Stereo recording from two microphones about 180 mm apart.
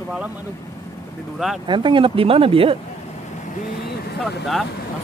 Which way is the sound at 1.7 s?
25° right (ahead or behind).